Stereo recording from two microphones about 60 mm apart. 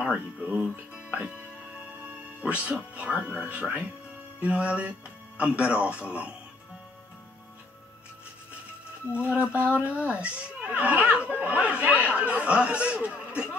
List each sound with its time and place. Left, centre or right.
0.1 s speech: right
9.1 s speech: right